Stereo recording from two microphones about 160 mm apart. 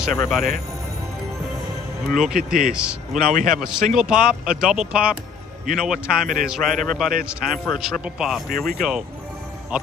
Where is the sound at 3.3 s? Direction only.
55° right (ahead or behind).